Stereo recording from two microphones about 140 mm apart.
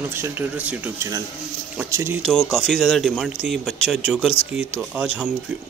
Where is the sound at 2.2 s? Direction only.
5° left (ahead or behind).